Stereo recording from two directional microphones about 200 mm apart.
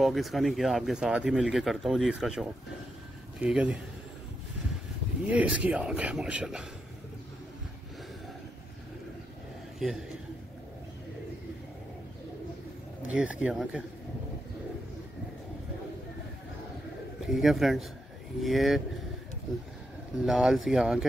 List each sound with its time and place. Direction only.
0.0 s speech: centre (ahead or behind)
5.2 s speech: 5° right (ahead or behind)
13.0 s speech: 5° right (ahead or behind)
17.3 s speech: centre (ahead or behind)
20.2 s speech: centre (ahead or behind)